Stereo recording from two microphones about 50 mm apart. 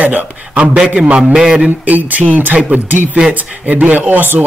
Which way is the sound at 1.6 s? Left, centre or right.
Right.